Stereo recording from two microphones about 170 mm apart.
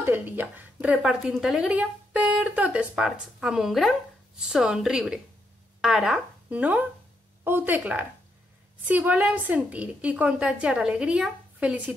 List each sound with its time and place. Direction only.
0.0 s a woman's voice: 10° right (ahead or behind)